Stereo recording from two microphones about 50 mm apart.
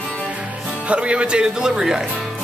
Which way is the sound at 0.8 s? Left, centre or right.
Right.